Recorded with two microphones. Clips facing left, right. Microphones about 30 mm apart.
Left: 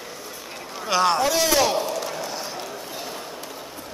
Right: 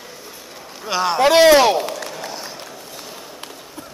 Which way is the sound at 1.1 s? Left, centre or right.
Right.